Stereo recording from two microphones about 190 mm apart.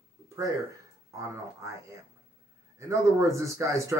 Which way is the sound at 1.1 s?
15° right (ahead or behind).